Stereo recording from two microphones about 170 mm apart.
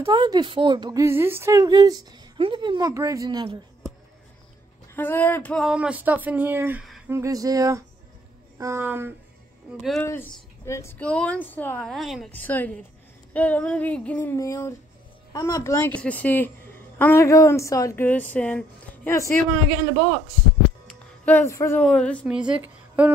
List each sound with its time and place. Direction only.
0.0 s a woman's voice: 25° right (ahead or behind)
4.9 s a woman's voice: 10° left (ahead or behind)
5.7 s a woman's voice: 5° right (ahead or behind)
9.8 s a woman's voice: centre (ahead or behind)
10.6 s a woman's voice: 15° left (ahead or behind)
21.3 s a woman's voice: 15° left (ahead or behind)
21.8 s a woman's voice: 5° left (ahead or behind)
22.2 s a woman's voice: 5° right (ahead or behind)